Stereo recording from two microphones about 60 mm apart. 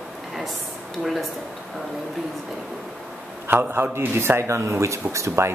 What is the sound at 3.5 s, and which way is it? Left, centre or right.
A man's voice, right.